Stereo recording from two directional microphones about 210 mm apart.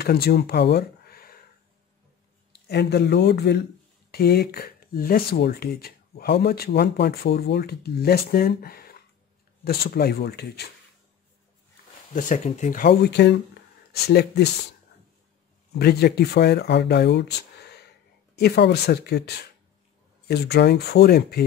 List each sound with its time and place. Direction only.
0.0 s speech: 45° left (ahead or behind)
2.7 s speech: 55° left (ahead or behind)
12.1 s speech: 40° left (ahead or behind)
15.7 s speech: 50° left (ahead or behind)